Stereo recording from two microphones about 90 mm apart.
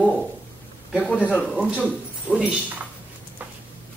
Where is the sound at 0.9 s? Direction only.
15° left (ahead or behind).